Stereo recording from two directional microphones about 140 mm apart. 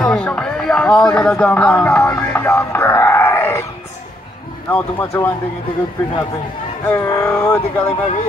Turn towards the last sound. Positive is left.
turn(degrees=15)  # may be behind; listen again after turning